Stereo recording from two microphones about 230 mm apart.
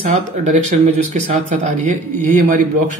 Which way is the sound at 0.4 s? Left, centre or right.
Right.